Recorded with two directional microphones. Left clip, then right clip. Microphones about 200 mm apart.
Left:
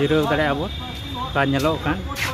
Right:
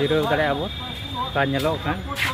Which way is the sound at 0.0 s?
5° left (ahead or behind).